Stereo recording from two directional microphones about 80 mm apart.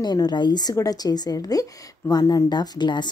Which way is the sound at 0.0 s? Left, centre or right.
Left.